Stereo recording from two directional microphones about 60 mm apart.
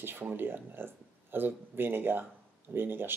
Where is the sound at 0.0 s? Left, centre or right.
Right.